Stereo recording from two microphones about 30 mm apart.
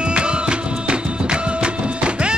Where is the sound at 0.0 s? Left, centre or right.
Right.